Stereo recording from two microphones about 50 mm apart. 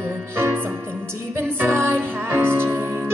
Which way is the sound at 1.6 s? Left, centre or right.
Right.